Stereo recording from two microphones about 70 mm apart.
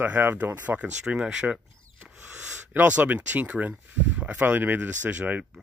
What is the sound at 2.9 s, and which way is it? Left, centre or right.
Speech, right.